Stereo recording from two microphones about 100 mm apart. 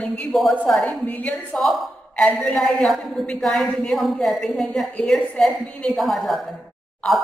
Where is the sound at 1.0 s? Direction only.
15° left (ahead or behind).